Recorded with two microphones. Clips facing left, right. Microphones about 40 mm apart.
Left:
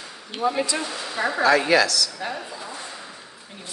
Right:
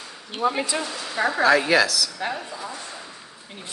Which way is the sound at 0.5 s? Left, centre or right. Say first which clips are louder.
Left 1 dB; right.